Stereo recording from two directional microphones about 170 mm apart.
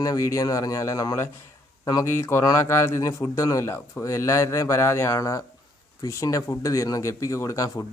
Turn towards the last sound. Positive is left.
turn(degrees=20)  # may be behind; listen again after turning